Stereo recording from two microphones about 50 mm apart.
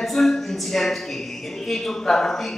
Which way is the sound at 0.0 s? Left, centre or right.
Centre.